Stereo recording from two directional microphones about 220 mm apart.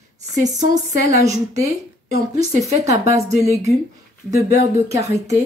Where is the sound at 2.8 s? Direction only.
15° right (ahead or behind).